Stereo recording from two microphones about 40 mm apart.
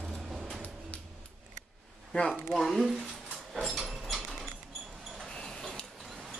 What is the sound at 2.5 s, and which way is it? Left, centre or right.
Speech, centre.